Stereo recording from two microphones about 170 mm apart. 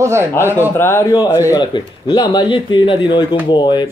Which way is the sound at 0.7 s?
15° left (ahead or behind).